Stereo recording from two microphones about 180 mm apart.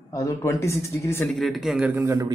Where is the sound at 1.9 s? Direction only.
15° right (ahead or behind).